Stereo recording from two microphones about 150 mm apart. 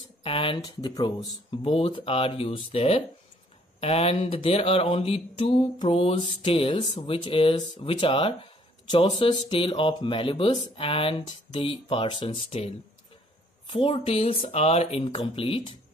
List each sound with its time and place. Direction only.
0.2 s speech: 35° left (ahead or behind)